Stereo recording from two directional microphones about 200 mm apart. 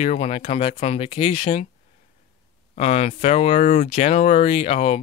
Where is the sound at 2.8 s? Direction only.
35° left (ahead or behind).